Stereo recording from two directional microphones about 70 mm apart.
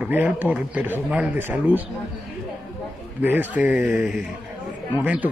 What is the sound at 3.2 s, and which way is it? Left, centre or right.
Speech, right.